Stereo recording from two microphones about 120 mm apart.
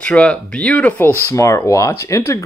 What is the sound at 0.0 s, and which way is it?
Speech, 10° left (ahead or behind).